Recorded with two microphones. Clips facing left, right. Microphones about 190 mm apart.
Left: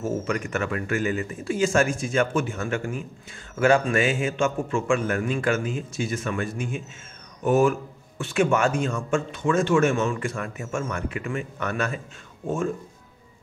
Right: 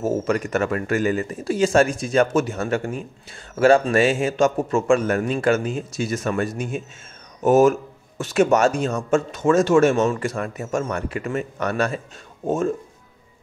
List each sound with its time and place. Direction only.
0.0 s speech: 40° right (ahead or behind)